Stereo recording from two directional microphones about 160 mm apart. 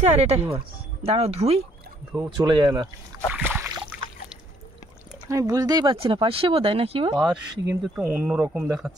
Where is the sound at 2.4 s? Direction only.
30° right (ahead or behind).